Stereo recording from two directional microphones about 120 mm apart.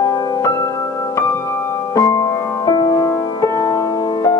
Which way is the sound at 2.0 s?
30° left (ahead or behind).